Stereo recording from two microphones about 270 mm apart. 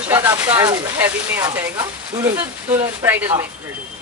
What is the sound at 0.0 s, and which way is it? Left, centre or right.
A woman's voice, centre.